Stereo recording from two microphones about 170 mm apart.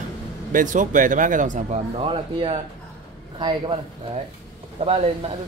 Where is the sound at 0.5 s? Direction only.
50° right (ahead or behind).